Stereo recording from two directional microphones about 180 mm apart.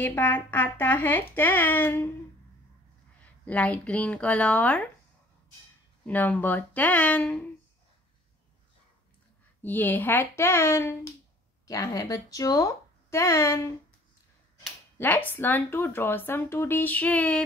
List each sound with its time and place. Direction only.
0.0 s speech: 10° left (ahead or behind)
3.4 s speech: 10° left (ahead or behind)
6.0 s speech: 10° left (ahead or behind)
9.6 s speech: 10° left (ahead or behind)
15.0 s speech: 10° left (ahead or behind)